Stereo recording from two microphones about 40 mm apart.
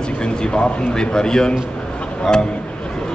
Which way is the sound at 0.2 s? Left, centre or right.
Left.